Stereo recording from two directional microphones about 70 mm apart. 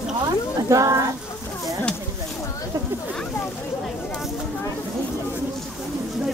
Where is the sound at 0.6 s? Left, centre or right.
Right.